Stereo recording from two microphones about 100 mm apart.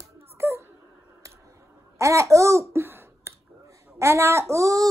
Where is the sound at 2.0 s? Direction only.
30° right (ahead or behind).